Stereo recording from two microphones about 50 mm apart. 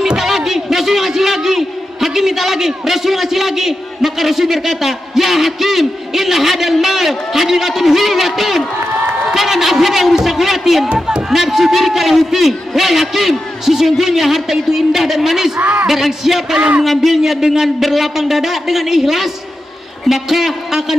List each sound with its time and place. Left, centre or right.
0.2 s a man's voice: centre
15.6 s speech: right
15.9 s a man's voice: centre